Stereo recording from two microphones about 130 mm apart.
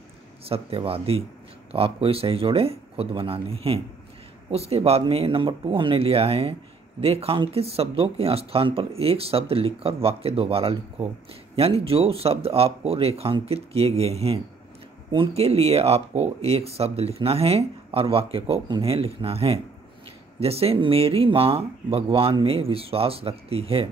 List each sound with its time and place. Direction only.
0.5 s speech: 45° right (ahead or behind)